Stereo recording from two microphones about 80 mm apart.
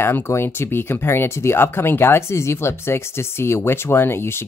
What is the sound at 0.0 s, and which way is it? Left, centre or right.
Speech, left.